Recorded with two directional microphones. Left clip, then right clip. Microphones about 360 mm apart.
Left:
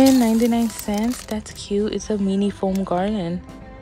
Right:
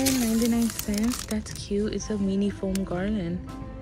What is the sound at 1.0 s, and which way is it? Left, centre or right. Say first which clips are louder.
Speech: left 4 dB; centre.